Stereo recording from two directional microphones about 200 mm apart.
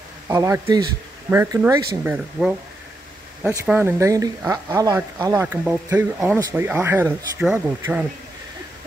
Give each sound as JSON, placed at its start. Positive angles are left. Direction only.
{"t": 0.3, "sound": "speech", "side_deg": -15}